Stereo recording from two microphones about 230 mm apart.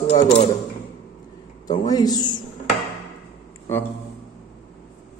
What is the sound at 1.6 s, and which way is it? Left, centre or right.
Speech, left.